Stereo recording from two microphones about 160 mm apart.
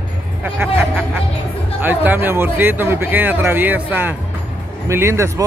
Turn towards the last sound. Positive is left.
turn(degrees=-20)  # may be behind; listen again after turning